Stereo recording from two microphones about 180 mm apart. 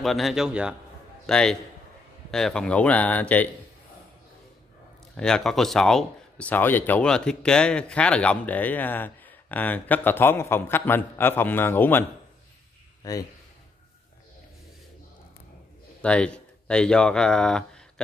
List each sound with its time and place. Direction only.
0.0 s a man's voice: centre (ahead or behind)
5.1 s speech: 5° left (ahead or behind); by 13.2 s 20° left (ahead or behind)
16.0 s speech: 5° left (ahead or behind)